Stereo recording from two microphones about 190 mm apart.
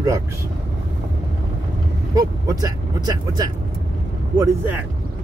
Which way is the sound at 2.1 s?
20° right (ahead or behind).